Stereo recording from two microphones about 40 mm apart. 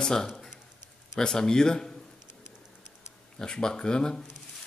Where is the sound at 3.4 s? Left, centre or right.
Centre.